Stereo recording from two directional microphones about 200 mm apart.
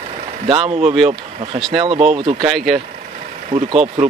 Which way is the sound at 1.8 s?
30° right (ahead or behind).